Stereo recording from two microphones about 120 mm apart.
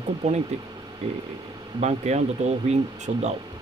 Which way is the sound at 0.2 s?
70° right (ahead or behind).